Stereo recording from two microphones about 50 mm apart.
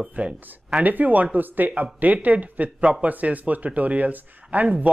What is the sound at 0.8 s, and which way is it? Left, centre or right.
Speech, right.